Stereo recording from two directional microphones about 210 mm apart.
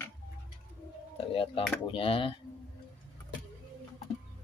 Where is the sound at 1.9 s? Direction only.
25° left (ahead or behind).